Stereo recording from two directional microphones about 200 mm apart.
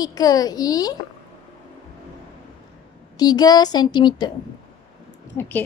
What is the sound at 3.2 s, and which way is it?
A woman's voice, 20° left (ahead or behind).